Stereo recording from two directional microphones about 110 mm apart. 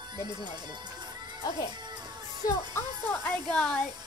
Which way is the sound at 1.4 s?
35° left (ahead or behind).